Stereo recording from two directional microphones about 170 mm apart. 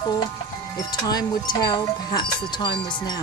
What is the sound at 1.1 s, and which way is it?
Speech, 25° left (ahead or behind).